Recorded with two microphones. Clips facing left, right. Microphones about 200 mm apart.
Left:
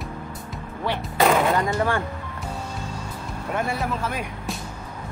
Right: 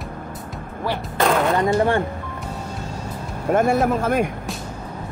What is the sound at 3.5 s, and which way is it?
Speech, 45° right (ahead or behind).